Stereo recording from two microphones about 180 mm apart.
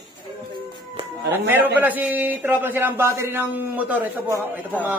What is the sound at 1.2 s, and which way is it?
Speech, 75° right (ahead or behind).